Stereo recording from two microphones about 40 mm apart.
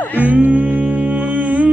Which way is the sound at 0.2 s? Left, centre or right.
Right.